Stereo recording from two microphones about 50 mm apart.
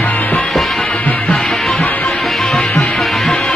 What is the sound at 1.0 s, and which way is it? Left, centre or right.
Music, left.